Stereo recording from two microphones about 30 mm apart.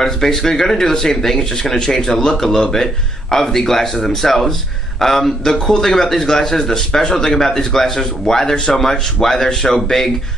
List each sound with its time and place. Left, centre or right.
0.0 s speech: centre